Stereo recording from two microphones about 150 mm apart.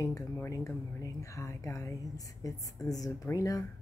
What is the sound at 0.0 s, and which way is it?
Speech, 20° left (ahead or behind).